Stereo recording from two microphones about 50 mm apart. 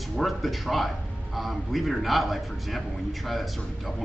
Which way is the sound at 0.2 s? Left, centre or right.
Centre.